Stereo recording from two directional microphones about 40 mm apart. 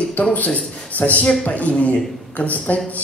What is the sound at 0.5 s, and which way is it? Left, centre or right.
A man's voice, left.